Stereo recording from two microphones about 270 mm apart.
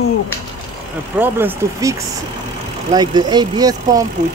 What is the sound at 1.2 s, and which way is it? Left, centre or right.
Speech, centre.